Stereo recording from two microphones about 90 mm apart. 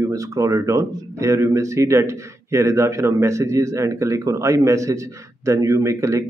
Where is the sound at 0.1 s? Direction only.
35° right (ahead or behind).